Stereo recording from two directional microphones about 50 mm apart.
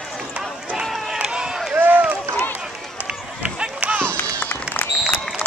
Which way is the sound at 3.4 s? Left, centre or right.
Right.